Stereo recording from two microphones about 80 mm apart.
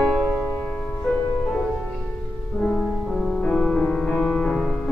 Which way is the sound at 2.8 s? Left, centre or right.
Centre.